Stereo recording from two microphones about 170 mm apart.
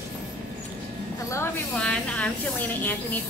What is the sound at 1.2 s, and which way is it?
Speech, 15° left (ahead or behind).